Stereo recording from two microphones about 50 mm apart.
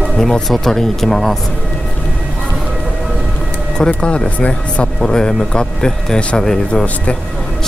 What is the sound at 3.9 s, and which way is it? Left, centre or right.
Speech, left.